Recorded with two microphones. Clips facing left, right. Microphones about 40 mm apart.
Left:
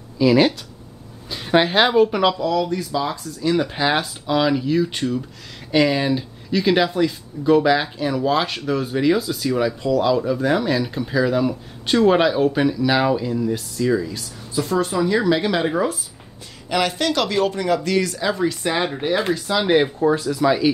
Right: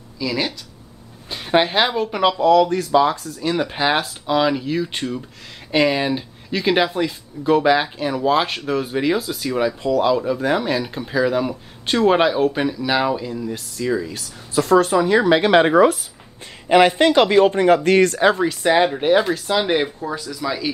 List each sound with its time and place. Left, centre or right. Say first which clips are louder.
0.2 s speech: left 8 dB; centre
1.3 s a woman's voice: even; centre
2.5 s speech: right 7 dB; right
3.1 s speech: even; centre
14.5 s speech: right 6 dB; right
14.9 s speech: right 3 dB; right
15.7 s speech: right 8 dB; right
16.6 s speech: right 7 dB; right
18.4 s speech: right 5 dB; right
19.5 s speech: left 2 dB; centre
20.0 s speech: left 8 dB; centre